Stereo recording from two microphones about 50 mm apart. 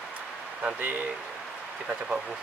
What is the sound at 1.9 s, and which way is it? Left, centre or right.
Speech, centre.